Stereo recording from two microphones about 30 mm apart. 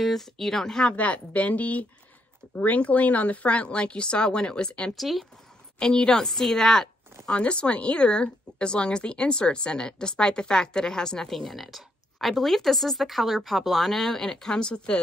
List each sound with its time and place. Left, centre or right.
0.0 s a woman's voice: centre
0.9 s a woman's voice: left
4.9 s speech: centre
5.8 s a woman's voice: left
7.2 s speech: left
11.2 s speech: centre
14.5 s speech: left